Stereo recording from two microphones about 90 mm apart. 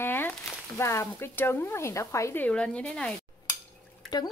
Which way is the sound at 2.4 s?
15° left (ahead or behind).